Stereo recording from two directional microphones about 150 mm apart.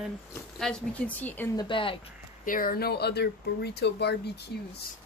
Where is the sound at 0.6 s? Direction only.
5° left (ahead or behind).